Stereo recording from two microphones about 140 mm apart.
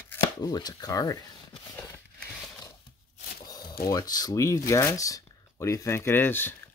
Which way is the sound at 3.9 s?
25° left (ahead or behind).